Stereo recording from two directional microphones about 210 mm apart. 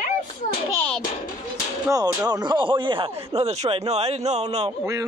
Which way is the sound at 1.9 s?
15° right (ahead or behind).